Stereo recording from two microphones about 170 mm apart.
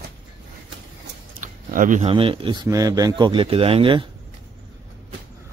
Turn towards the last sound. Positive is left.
turn(degrees=-30)  # may be behind; listen again after turning